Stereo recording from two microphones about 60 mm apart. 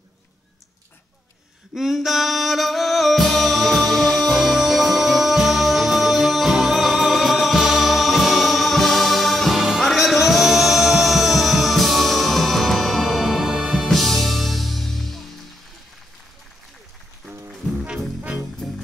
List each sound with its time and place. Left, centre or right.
1.8 s music: centre
13.8 s music: centre
17.8 s music: centre